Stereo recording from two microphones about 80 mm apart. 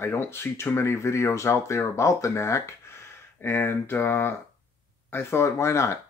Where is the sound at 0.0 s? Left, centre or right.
Left.